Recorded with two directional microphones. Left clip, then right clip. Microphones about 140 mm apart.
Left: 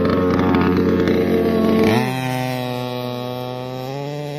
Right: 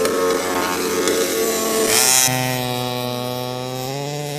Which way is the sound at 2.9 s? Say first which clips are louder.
Right 2 dB; 15° right (ahead or behind).